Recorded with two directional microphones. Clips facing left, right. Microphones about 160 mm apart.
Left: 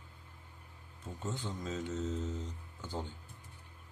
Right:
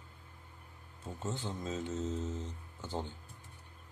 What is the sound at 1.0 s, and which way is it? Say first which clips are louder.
Speech: right 1 dB; 25° right (ahead or behind).